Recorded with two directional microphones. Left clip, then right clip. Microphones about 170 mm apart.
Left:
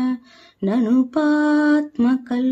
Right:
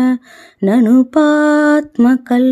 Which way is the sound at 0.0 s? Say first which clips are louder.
Right 9 dB; 40° right (ahead or behind).